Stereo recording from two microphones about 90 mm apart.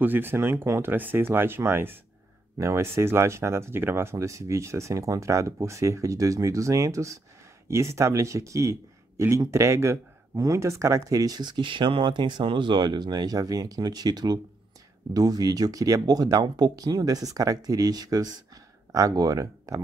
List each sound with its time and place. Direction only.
0.0 s speech: 20° right (ahead or behind); by 19.8 s 40° right (ahead or behind)